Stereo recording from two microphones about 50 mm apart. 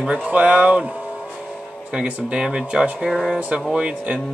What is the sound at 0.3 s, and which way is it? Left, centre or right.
Speech, right.